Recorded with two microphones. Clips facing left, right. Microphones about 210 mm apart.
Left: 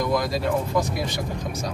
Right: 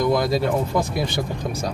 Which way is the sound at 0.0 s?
30° right (ahead or behind).